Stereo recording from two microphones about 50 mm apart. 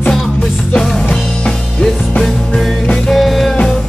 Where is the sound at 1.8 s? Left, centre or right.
Centre.